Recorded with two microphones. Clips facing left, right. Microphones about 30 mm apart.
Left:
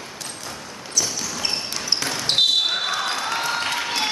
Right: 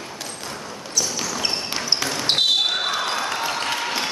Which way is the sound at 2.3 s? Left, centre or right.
Centre.